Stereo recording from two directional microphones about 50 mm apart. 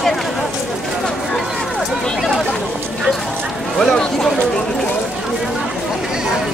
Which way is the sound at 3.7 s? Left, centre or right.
Centre.